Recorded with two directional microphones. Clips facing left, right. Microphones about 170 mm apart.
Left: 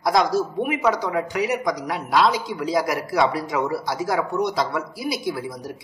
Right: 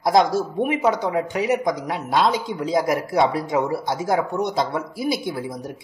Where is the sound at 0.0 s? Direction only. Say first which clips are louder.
Right 2 dB; 25° right (ahead or behind).